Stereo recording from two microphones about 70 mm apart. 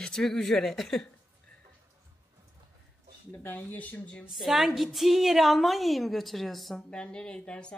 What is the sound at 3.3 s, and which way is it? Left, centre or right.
Speech, left.